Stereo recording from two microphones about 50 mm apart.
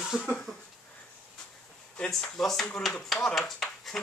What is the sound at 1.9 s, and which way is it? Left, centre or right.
Speech, left.